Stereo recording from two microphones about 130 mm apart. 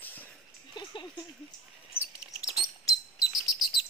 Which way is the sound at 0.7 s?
35° left (ahead or behind).